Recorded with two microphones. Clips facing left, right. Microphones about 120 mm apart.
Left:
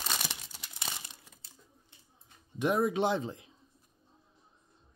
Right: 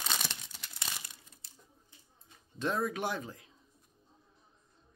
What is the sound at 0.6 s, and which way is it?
Crumpling, 15° left (ahead or behind).